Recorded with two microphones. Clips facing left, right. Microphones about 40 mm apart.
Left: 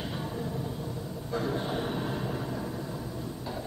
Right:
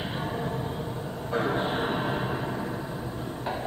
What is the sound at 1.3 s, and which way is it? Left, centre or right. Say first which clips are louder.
Music: right 4 dB; right.